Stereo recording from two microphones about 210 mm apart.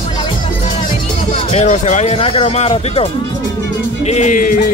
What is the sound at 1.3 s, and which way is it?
Speech, 35° left (ahead or behind).